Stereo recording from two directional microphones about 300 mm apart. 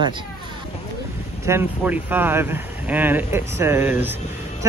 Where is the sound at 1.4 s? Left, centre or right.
Centre.